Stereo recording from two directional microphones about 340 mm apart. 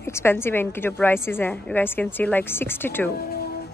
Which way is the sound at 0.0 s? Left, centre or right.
Centre.